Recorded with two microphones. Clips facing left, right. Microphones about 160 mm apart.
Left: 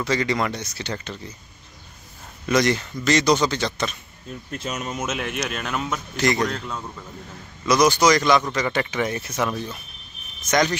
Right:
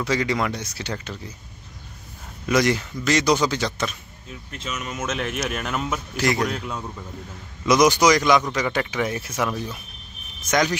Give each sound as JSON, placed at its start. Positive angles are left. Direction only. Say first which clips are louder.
{"t": 0.0, "sound": "a man's voice", "louder": "even", "side_deg": -10}
{"t": 2.4, "sound": "a man's voice", "louder": "even", "side_deg": -5}
{"t": 4.3, "sound": "speech", "louder": "left 3 dB", "side_deg": 40}
{"t": 5.1, "sound": "a man's voice", "louder": "right 1 dB", "side_deg": 0}
{"t": 7.6, "sound": "a man's voice", "louder": "right 1 dB", "side_deg": -15}